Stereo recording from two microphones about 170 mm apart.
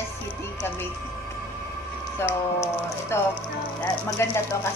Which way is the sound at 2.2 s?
15° left (ahead or behind).